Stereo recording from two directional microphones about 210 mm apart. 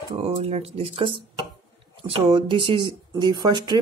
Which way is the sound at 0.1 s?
30° right (ahead or behind).